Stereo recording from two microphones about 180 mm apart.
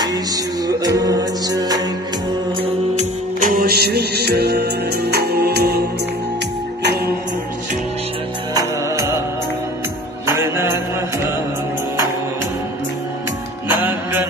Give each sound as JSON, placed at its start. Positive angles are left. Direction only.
{"t": 0.7, "sound": "music", "side_deg": -20}
{"t": 3.0, "sound": "music", "side_deg": -50}
{"t": 8.5, "sound": "music", "side_deg": -15}
{"t": 10.2, "sound": "music", "side_deg": -15}